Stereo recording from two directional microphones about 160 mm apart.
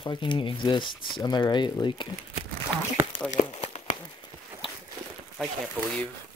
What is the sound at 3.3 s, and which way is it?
Crumpling, 40° left (ahead or behind).